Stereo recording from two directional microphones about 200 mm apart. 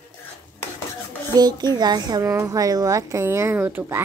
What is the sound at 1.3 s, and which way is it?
A woman's voice, 20° right (ahead or behind).